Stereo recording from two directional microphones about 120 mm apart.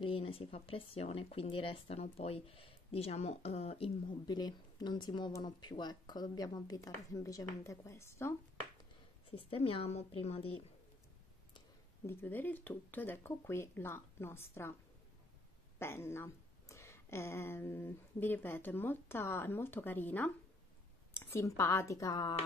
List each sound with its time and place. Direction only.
0.0 s speech: 50° left (ahead or behind)
4.3 s a woman's voice: 35° left (ahead or behind)
9.3 s speech: 50° left (ahead or behind)
12.1 s a woman's voice: 15° left (ahead or behind)
15.8 s a woman's voice: 20° left (ahead or behind)